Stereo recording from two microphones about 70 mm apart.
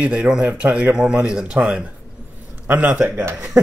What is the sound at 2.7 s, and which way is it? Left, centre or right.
Speech, right.